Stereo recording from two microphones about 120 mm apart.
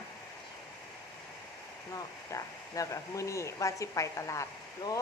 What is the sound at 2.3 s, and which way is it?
Speech, 30° left (ahead or behind).